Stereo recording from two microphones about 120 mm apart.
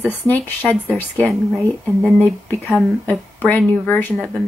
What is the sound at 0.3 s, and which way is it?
Speech, 15° left (ahead or behind).